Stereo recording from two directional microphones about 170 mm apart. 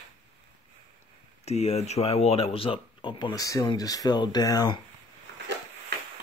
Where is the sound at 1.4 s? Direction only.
40° left (ahead or behind).